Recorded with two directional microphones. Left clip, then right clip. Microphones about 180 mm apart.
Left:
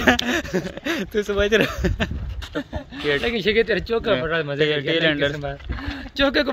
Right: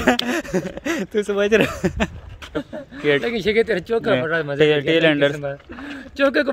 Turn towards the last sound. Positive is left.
turn(degrees=-5)  # may be behind; listen again after turning